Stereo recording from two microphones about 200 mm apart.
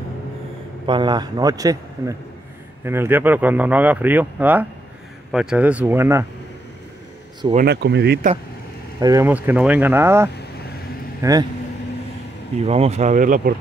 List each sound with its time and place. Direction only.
0.8 s speech: 20° right (ahead or behind)
7.6 s speech: 60° right (ahead or behind)
9.0 s speech: 15° right (ahead or behind)
12.6 s speech: 30° right (ahead or behind)